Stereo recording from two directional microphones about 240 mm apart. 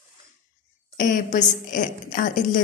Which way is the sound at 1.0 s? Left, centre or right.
Left.